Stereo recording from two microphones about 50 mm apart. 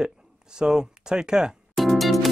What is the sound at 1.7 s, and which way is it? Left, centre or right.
Music, centre.